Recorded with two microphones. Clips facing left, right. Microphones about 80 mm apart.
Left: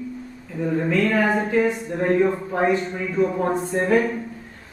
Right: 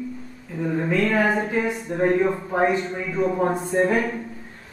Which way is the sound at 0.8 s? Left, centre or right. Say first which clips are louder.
Even; centre.